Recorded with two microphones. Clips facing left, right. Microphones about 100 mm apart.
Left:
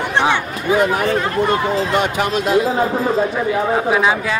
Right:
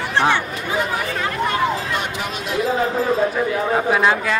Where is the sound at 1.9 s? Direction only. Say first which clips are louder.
Left 7 dB; 75° left (ahead or behind).